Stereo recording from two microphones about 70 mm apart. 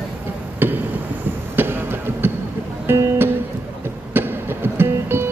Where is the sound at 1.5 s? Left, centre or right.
Right.